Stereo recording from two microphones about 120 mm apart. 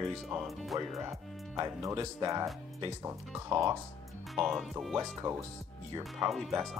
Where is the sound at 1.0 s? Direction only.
25° right (ahead or behind).